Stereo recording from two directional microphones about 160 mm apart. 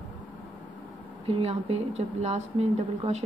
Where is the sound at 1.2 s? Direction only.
35° right (ahead or behind).